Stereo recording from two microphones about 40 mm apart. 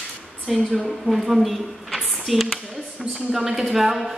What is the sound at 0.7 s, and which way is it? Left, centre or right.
A woman's voice, centre.